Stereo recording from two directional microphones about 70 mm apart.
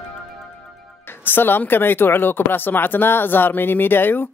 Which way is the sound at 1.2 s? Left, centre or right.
Left.